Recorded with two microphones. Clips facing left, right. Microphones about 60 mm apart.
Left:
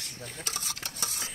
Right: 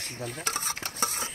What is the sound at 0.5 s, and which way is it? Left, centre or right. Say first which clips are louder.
Stir: right 6 dB; right.